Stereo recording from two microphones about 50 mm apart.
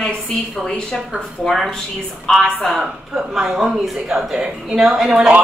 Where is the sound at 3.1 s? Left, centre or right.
Centre.